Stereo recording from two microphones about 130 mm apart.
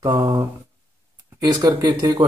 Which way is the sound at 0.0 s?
25° right (ahead or behind).